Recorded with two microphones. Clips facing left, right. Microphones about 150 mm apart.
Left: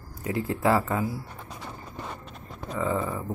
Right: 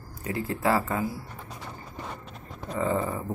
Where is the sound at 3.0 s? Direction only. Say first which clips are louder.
Even; 10° right (ahead or behind).